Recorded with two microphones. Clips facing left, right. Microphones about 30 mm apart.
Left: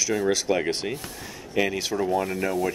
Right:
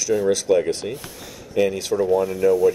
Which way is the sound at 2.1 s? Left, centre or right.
Left.